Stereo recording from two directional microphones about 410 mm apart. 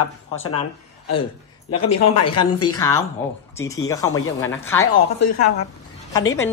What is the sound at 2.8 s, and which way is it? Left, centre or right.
A man's voice, centre.